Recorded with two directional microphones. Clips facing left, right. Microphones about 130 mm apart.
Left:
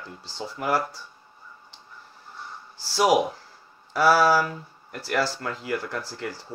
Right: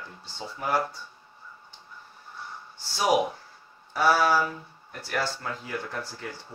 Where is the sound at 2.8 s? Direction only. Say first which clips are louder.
Left 3 dB; 90° left.